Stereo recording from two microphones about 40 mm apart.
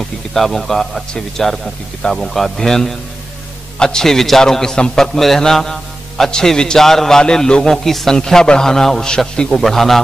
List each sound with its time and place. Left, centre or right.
0.3 s speech: centre
2.0 s a man's voice: centre